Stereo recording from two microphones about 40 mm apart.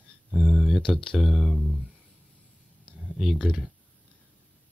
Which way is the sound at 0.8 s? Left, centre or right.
Centre.